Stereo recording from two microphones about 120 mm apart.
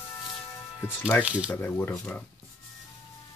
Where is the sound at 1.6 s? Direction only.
20° left (ahead or behind).